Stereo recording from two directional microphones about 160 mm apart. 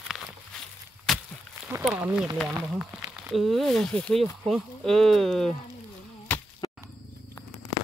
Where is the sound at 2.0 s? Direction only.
5° right (ahead or behind).